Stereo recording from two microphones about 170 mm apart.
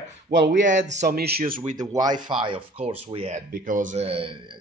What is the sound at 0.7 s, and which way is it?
Speech, 45° right (ahead or behind).